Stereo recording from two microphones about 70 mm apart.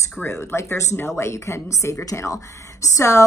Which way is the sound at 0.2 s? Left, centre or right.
Left.